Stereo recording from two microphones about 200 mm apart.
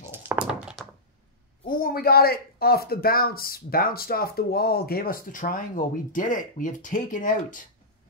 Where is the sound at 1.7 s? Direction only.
45° left (ahead or behind).